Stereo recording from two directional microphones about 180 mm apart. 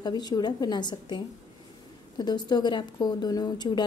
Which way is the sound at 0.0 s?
20° left (ahead or behind).